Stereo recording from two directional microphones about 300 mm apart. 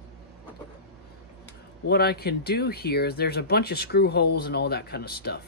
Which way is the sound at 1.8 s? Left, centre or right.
Left.